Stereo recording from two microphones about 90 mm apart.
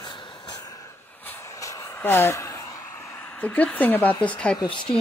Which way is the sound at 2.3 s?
30° left (ahead or behind).